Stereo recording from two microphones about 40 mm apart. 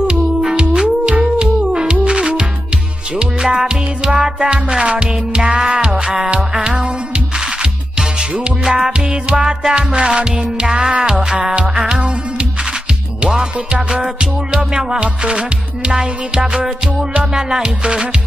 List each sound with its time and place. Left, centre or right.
0.0 s music: centre
8.2 s music: centre
13.2 s music: right